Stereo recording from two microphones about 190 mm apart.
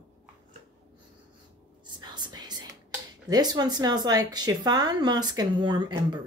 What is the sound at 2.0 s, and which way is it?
Whispering, 20° right (ahead or behind).